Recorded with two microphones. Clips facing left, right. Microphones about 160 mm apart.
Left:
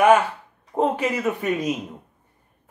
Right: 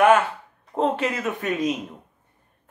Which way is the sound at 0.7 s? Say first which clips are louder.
Left 1 dB; 5° left (ahead or behind).